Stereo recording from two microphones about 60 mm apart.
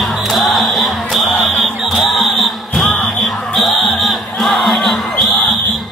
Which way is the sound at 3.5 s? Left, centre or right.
Centre.